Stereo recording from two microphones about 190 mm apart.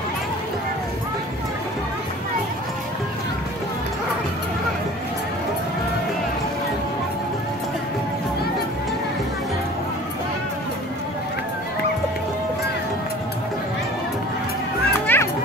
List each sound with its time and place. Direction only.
15.1 s music: 10° left (ahead or behind)